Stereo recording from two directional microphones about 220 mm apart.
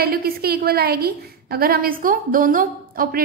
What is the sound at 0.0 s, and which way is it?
A woman's voice, 45° right (ahead or behind).